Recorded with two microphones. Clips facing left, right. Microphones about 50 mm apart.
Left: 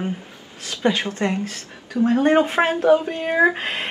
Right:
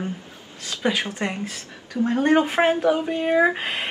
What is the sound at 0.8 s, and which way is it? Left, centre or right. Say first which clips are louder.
Speech: left 3 dB; centre.